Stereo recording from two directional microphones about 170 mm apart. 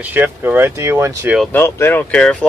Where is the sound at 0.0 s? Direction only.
10° right (ahead or behind).